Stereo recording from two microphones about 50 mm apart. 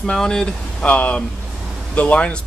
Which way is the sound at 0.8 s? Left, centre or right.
Left.